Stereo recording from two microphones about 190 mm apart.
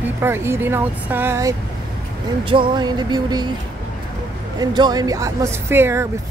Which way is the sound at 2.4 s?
25° right (ahead or behind).